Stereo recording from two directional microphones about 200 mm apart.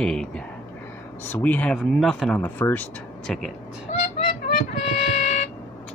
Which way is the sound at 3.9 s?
40° left (ahead or behind).